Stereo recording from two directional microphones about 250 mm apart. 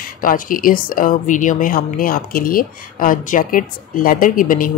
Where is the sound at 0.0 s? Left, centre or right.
Left.